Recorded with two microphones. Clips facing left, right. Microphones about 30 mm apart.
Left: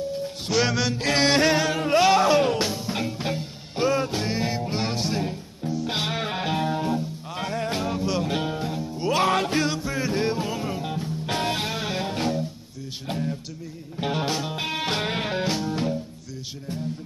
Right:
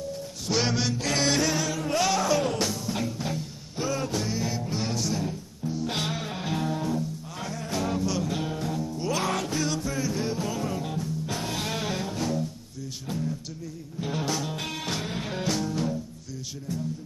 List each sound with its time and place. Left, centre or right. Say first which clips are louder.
0.5 s music: left 3 dB; centre
0.9 s music: left 7 dB; left
5.9 s music: left 3 dB; left
6.1 s music: left 5 dB; left
9.7 s music: left 2 dB; left
10.0 s music: left 4 dB; left
10.4 s music: left 2 dB; left
11.2 s music: left 6 dB; left
11.7 s music: left 2 dB; centre
12.0 s music: left 3 dB; left
15.0 s music: left 6 dB; left
15.3 s music: left 3 dB; left